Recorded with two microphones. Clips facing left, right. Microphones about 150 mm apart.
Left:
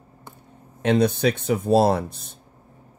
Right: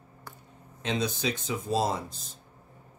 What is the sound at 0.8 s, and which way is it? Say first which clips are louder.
Speech: left 10 dB; 60° left (ahead or behind).